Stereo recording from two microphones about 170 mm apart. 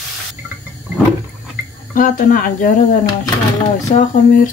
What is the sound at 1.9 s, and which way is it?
Speech, 55° left (ahead or behind).